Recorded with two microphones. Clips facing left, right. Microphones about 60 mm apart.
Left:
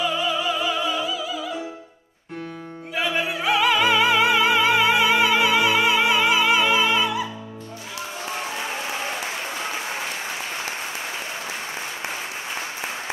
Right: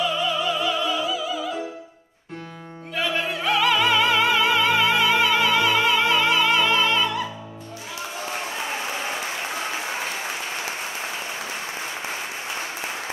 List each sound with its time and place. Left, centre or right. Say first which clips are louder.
0.0 s opera: even; centre
2.9 s music: left 1 dB; centre